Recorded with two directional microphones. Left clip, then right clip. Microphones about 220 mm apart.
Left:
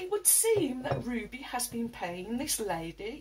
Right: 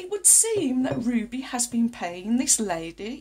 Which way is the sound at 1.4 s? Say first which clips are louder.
Right 7 dB; 50° right (ahead or behind).